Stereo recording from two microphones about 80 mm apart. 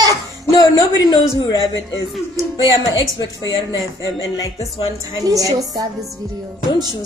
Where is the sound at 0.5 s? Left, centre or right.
Left.